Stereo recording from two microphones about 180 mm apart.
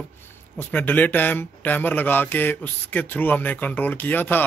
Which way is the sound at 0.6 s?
10° left (ahead or behind).